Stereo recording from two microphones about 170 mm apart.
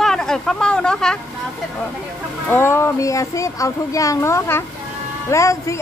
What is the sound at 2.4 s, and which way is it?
Speech, 15° left (ahead or behind).